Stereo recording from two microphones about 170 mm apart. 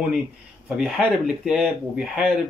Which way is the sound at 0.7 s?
Centre (ahead or behind).